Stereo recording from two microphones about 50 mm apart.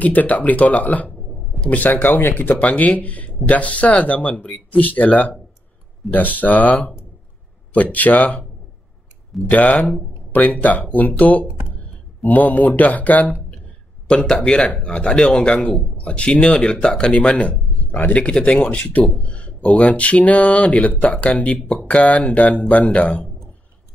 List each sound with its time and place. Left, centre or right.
0.0 s speech: left
2.6 s speech: left
6.3 s speech: left
9.5 s speech: left
14.2 s speech: centre
14.5 s speech: left